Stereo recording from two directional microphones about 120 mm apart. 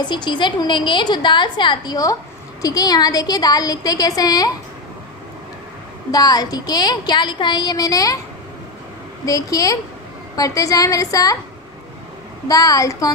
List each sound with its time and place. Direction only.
0.0 s a woman's voice: 40° left (ahead or behind)
6.1 s a woman's voice: 30° left (ahead or behind)
9.2 s a woman's voice: 30° left (ahead or behind)
12.4 s a woman's voice: 30° left (ahead or behind)